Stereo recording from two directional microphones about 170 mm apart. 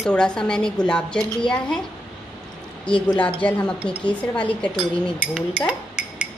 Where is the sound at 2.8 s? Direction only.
30° left (ahead or behind).